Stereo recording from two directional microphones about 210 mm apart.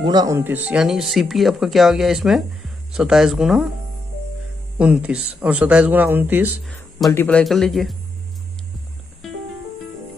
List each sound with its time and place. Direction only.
0.0 s speech: 20° right (ahead or behind); by 3.7 s 5° right (ahead or behind)
4.7 s speech: 5° right (ahead or behind)
7.1 s speech: 10° left (ahead or behind)
9.2 s music: centre (ahead or behind)